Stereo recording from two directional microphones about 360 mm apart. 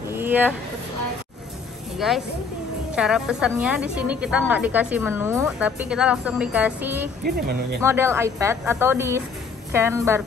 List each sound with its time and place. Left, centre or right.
0.1 s a sound: centre
2.0 s a woman's voice: centre
7.2 s speech: right
7.8 s speech: centre